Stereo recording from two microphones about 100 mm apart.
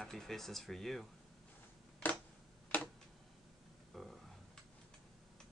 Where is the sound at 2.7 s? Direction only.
15° left (ahead or behind).